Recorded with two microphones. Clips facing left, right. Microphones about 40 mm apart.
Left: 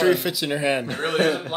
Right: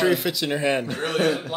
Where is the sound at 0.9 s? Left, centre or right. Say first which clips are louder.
Left 1 dB; left.